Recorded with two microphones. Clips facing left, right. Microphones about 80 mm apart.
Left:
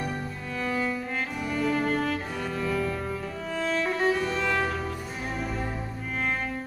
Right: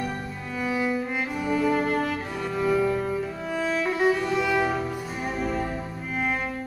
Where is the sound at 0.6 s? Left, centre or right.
Centre.